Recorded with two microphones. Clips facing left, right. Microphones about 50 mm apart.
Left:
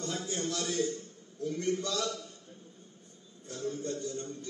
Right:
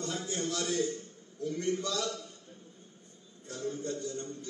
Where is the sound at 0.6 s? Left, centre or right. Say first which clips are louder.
Right 1 dB; right.